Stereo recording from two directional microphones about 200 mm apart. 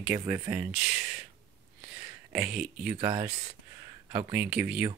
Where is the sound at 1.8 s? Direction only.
5° right (ahead or behind).